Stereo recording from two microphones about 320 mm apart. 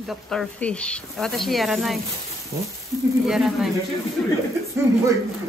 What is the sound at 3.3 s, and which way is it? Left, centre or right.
Speech, centre.